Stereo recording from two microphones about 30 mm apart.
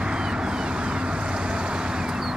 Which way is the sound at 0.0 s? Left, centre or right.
Right.